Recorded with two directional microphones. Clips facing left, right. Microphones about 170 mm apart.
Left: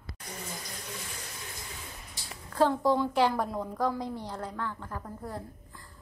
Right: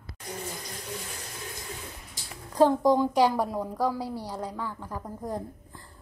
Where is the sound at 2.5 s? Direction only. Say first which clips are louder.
Right 4 dB; 15° right (ahead or behind).